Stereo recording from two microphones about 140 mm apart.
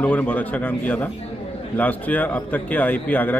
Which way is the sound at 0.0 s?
10° left (ahead or behind).